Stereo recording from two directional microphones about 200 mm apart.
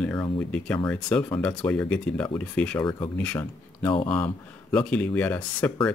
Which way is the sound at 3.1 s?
10° left (ahead or behind).